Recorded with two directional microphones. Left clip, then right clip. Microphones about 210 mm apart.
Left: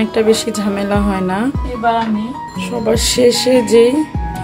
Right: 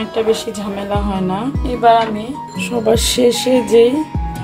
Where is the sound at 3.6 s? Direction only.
15° left (ahead or behind).